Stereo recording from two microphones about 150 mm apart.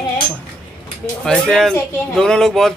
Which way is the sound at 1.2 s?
5° left (ahead or behind).